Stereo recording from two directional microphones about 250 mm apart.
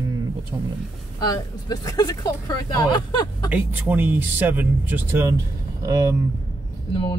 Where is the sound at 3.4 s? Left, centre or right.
Centre.